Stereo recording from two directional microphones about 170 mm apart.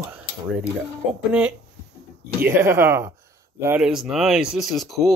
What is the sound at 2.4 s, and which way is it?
Speech, 15° right (ahead or behind).